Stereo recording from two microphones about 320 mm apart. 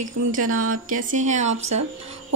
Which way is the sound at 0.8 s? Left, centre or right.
Right.